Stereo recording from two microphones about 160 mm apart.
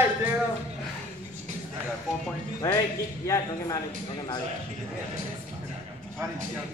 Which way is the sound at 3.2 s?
20° left (ahead or behind).